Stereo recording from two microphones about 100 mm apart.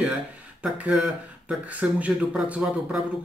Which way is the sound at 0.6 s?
15° right (ahead or behind).